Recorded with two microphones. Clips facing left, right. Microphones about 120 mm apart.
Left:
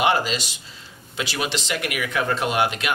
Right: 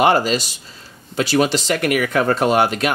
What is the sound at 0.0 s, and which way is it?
Speech, 45° right (ahead or behind).